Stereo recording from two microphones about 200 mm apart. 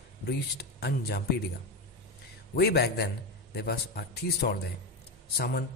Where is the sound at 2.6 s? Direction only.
55° left (ahead or behind).